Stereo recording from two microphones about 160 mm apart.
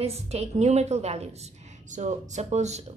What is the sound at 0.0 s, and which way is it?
A woman's voice, 40° right (ahead or behind).